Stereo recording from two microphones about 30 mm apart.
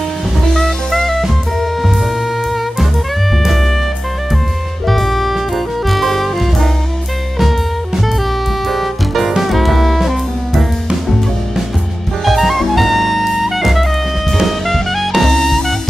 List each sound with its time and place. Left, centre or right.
0.5 s drum kit: centre
3.4 s music: centre
4.8 s music: centre
8.6 s music: centre
9.5 s saxophone: centre
12.3 s music: centre